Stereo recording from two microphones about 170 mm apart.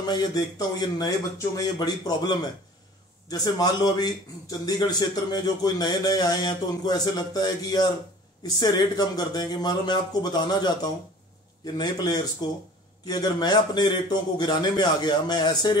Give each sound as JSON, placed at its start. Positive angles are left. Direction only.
{"t": 0.0, "sound": "a man's voice", "side_deg": 25}